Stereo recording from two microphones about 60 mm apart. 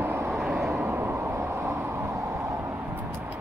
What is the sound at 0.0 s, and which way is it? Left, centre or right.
Vehicle, right.